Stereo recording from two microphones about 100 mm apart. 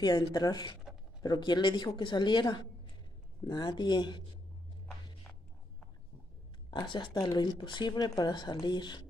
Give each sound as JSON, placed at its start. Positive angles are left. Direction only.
{"t": 0.3, "sound": "speech", "side_deg": 40}
{"t": 6.7, "sound": "speech", "side_deg": 50}